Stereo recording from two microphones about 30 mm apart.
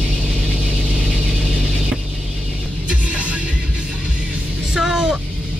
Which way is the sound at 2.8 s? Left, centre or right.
Right.